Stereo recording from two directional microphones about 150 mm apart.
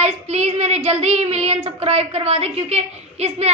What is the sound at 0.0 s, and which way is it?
A child's voice, 45° right (ahead or behind).